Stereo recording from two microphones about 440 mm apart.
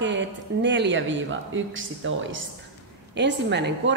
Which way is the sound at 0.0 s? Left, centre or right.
Right.